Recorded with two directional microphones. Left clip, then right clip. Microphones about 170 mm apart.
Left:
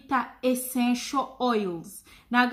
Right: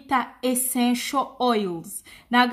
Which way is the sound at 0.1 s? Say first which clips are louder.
Right 2 dB; 50° right (ahead or behind).